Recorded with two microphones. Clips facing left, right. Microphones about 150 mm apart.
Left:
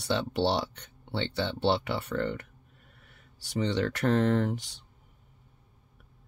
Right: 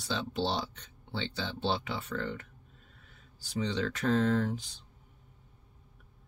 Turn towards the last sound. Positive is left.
turn(degrees=70)  # may be behind; listen again after turning